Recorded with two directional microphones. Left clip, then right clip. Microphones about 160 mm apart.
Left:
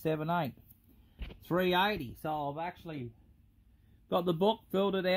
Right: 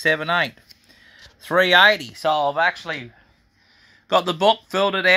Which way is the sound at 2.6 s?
70° right (ahead or behind).